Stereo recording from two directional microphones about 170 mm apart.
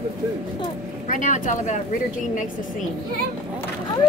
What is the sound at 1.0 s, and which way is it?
Speech, 50° left (ahead or behind).